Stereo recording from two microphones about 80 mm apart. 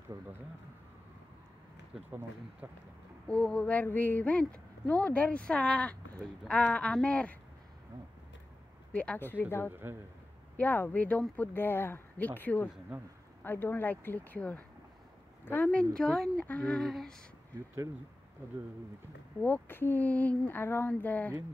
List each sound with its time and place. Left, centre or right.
2.6 s a man's voice: right
3.3 s speech: centre
8.9 s speech: centre
9.7 s a man's voice: right
10.6 s speech: left
15.9 s speech: centre
19.4 s speech: left